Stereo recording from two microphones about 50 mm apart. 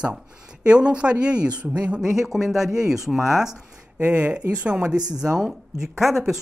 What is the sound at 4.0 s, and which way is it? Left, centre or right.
Speech, right.